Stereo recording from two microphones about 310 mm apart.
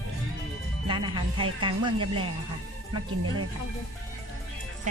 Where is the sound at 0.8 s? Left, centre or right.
Centre.